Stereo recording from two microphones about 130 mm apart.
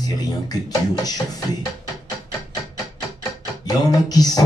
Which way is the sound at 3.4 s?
30° left (ahead or behind).